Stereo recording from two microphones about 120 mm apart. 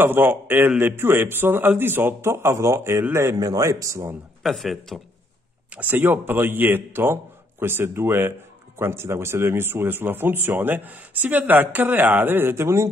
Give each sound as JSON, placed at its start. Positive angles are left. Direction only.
{"t": 0.0, "sound": "a man's voice", "side_deg": -15}
{"t": 4.4, "sound": "speech", "side_deg": 0}
{"t": 5.8, "sound": "speech", "side_deg": -15}